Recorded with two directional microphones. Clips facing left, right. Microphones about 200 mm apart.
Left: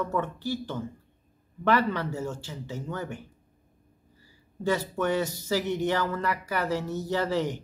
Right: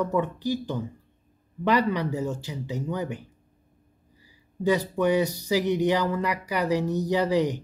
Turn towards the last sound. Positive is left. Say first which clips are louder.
# right 4 dB
turn(degrees=-15)  # may be behind; listen again after turning